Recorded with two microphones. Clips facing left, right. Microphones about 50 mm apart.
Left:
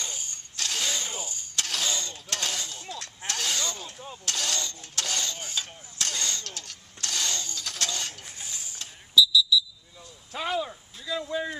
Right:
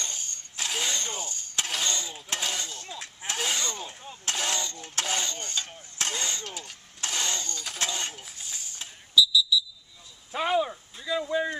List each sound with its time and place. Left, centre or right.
0.0 s ratchet: centre
0.6 s mechanisms: centre
0.9 s mechanisms: centre
1.7 s a sound: centre
4.3 s speech: right
4.7 s coin: right
5.2 s speech: centre
5.9 s speech: centre
7.0 s a sound: centre
7.5 s speech: centre
8.3 s a sound: centre
9.2 s smoke detector: centre
10.3 s speech: centre